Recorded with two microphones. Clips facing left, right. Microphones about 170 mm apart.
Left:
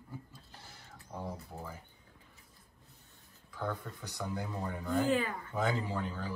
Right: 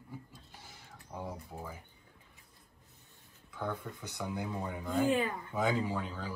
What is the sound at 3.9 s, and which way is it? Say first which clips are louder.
Speech: even; 15° right (ahead or behind).